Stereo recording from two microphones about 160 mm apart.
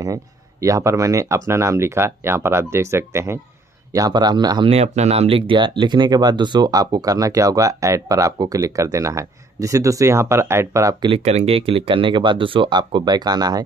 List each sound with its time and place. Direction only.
0.0 s speech: 20° right (ahead or behind)
4.6 s speech: 45° right (ahead or behind); by 11.1 s 20° right (ahead or behind)
11.1 s speech: 40° right (ahead or behind); by 13.7 s 25° right (ahead or behind)